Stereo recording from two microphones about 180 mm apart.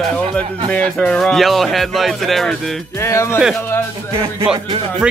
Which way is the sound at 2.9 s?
15° left (ahead or behind).